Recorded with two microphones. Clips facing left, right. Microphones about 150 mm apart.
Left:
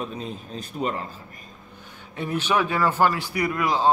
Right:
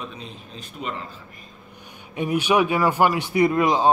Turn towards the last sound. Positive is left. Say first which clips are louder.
# right 5 dB
turn(degrees=-20)  # may be behind; listen again after turning